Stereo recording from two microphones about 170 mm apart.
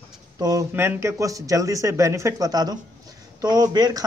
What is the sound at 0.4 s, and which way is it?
Speech, 20° right (ahead or behind).